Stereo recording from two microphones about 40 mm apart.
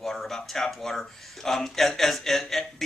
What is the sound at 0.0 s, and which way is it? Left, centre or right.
Speech, centre.